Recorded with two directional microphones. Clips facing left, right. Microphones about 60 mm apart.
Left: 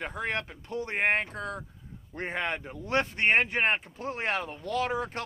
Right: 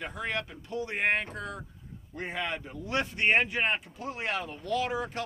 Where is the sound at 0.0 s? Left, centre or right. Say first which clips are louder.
Left 1 dB; left.